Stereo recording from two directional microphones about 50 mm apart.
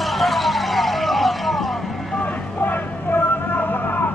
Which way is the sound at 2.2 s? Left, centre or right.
Left.